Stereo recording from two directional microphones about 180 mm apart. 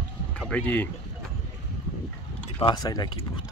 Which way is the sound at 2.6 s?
20° left (ahead or behind).